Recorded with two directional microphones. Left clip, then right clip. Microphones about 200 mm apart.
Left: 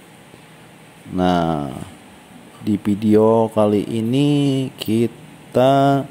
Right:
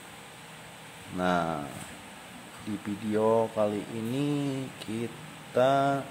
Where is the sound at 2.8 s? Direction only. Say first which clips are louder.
Left 12 dB; 30° left (ahead or behind).